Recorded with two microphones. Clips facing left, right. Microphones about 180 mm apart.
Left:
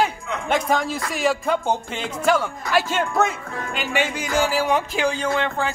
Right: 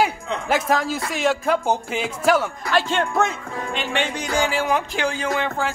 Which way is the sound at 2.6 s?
10° left (ahead or behind).